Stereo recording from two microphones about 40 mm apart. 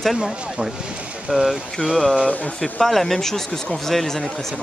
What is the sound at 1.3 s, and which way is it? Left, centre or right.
Speech, right.